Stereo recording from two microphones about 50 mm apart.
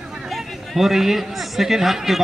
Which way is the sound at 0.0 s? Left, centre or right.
Centre.